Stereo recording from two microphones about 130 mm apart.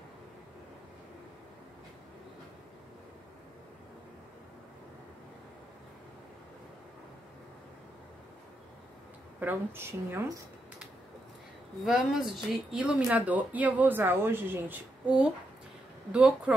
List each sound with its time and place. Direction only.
9.4 s speech: 15° right (ahead or behind)
11.8 s speech: centre (ahead or behind)